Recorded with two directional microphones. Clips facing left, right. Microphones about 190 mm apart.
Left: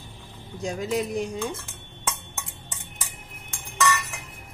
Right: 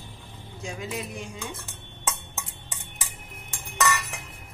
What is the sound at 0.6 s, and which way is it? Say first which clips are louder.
Speech: left 7 dB; 40° left (ahead or behind).